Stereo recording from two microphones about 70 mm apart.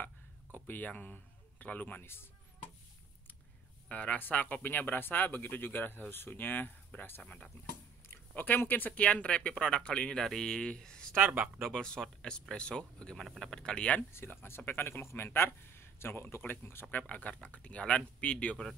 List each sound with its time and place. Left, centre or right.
0.0 s a sound: left
3.9 s speech: left
11.2 s speech: centre
11.7 s speech: centre
14.1 s speech: left
16.9 s speech: left